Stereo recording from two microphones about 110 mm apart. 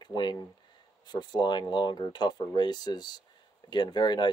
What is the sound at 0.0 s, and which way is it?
Speech, 40° left (ahead or behind).